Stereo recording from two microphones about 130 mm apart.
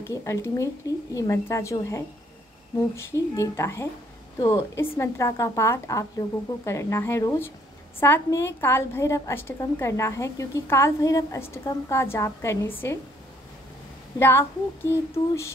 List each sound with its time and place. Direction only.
0.0 s a woman's voice: 25° left (ahead or behind)
14.1 s a woman's voice: 20° left (ahead or behind)